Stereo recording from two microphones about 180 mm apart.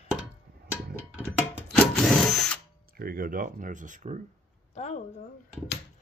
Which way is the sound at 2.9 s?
55° right (ahead or behind).